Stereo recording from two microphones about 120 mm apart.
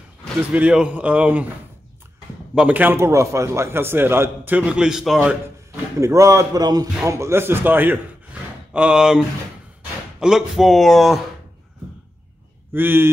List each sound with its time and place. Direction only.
0.5 s a man's voice: 10° right (ahead or behind)
2.5 s a man's voice: 10° right (ahead or behind)
5.9 s a man's voice: 25° right (ahead or behind); by 9.2 s 5° right (ahead or behind)
10.2 s speech: 5° right (ahead or behind)
12.7 s a man's voice: 20° right (ahead or behind)